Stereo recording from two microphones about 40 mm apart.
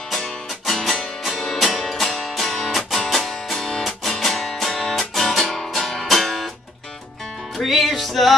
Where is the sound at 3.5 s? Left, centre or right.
Centre.